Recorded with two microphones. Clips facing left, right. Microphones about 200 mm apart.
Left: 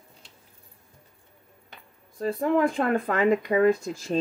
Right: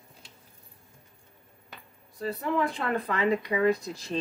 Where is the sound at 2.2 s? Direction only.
50° left (ahead or behind).